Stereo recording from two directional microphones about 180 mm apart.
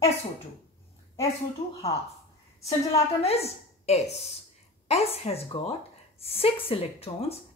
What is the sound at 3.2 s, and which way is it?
A woman's voice, 35° left (ahead or behind).